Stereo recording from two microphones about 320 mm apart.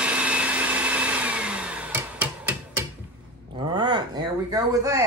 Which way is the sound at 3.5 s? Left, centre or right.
Centre.